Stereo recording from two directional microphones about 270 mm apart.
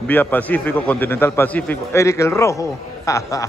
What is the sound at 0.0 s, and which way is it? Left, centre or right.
A man's voice, centre.